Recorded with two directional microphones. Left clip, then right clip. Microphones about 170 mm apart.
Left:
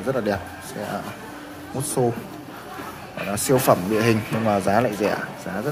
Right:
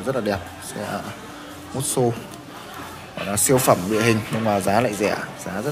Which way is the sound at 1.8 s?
10° right (ahead or behind).